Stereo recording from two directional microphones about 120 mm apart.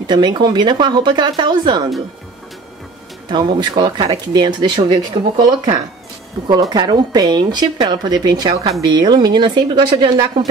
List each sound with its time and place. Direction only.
0.0 s speech: 40° right (ahead or behind)
3.3 s speech: 35° right (ahead or behind)